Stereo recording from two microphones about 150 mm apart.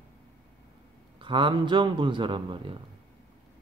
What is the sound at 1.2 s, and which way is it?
A man's voice, 35° right (ahead or behind).